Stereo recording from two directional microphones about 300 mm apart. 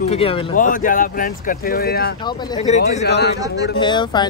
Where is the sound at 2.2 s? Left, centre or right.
Centre.